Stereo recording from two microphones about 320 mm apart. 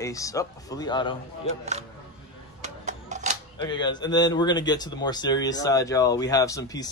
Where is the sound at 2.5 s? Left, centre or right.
Right.